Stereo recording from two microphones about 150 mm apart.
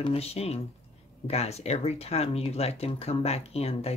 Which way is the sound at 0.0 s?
40° left (ahead or behind).